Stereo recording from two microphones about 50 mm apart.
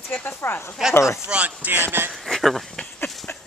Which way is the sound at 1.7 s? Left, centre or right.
Right.